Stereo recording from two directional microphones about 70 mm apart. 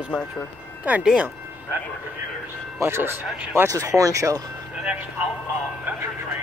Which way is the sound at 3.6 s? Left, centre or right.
Right.